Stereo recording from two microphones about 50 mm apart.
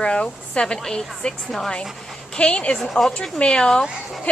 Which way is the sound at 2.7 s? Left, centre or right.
Centre.